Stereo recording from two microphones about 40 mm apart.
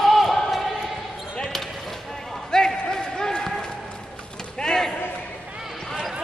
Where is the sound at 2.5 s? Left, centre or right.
Centre.